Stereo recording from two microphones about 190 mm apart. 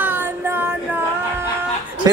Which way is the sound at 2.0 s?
20° right (ahead or behind).